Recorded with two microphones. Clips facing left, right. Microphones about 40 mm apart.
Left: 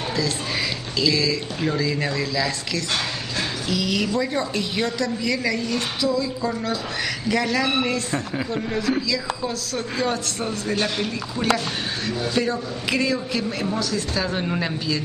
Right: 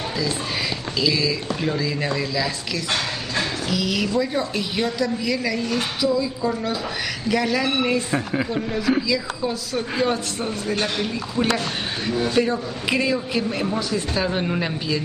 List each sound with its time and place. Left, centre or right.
0.9 s a man's voice: centre
10.4 s speech: centre
12.1 s a man's voice: centre